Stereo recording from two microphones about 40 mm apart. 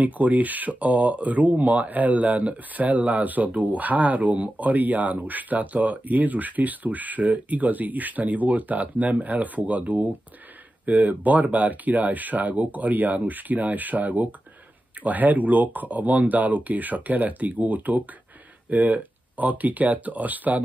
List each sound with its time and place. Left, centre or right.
0.0 s speech: right